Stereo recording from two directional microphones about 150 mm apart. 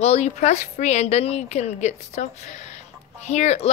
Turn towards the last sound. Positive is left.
turn(degrees=50)  # may be behind; listen again after turning